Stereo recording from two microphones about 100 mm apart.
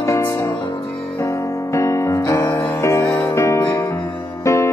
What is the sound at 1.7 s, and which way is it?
Music, 30° left (ahead or behind).